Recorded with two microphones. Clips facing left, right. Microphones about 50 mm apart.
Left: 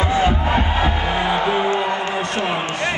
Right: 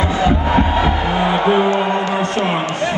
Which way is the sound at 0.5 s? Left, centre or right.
Right.